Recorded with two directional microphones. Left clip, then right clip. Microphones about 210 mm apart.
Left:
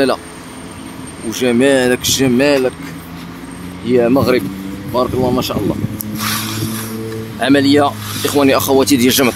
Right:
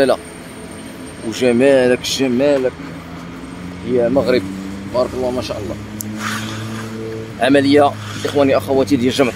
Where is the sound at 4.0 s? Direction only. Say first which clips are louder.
Left 2 dB; 20° left (ahead or behind).